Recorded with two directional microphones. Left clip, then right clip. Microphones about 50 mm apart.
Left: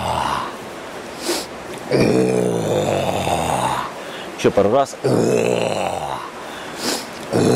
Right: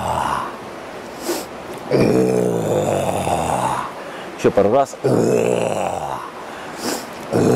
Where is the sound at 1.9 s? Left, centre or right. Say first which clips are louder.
Right 1 dB; right.